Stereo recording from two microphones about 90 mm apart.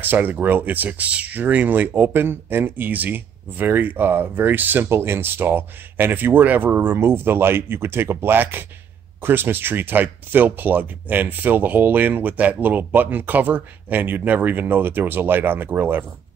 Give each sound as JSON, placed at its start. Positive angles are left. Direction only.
{"t": 0.0, "sound": "speech", "side_deg": -20}